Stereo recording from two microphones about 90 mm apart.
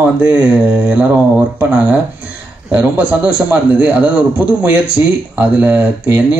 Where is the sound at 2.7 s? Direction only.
15° right (ahead or behind).